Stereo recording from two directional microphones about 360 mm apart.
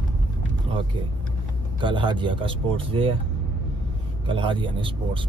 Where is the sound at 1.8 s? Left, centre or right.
Centre.